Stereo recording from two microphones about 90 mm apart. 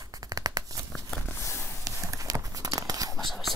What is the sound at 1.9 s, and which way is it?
Whispering, 40° right (ahead or behind).